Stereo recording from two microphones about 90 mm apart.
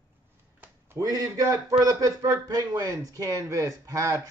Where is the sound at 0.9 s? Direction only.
40° right (ahead or behind).